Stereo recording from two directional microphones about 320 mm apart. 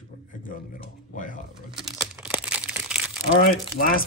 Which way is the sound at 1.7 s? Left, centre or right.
Centre.